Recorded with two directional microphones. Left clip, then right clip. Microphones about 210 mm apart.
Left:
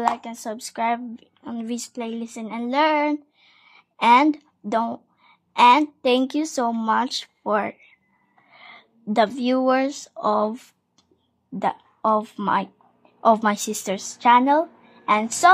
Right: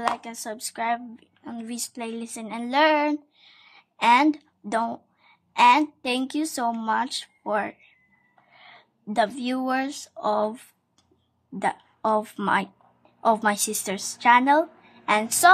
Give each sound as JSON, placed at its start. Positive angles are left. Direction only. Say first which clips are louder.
{"t": 0.1, "sound": "a woman's voice", "louder": "left 2 dB", "side_deg": 20}